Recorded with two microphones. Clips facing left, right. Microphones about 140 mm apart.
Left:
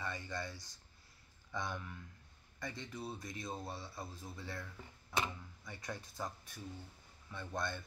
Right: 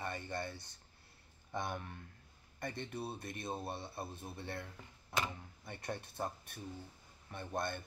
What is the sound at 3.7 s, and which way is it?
Speech, 60° right (ahead or behind).